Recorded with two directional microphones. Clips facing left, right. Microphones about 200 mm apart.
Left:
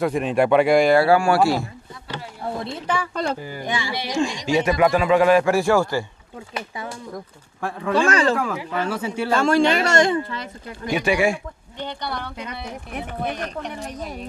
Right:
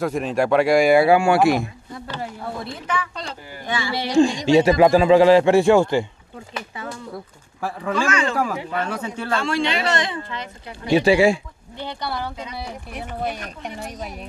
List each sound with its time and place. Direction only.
0.0 s speech: centre (ahead or behind)
0.9 s speech: 20° right (ahead or behind)
2.6 s speech: 30° left (ahead or behind)
3.6 s speech: 15° left (ahead or behind)
4.1 s speech: 35° right (ahead or behind)
7.9 s speech: 35° left (ahead or behind)
8.4 s speech: centre (ahead or behind)
9.3 s speech: 45° left (ahead or behind)
10.9 s speech: 30° right (ahead or behind)
11.8 s speech: 5° right (ahead or behind)
12.4 s speech: 50° left (ahead or behind)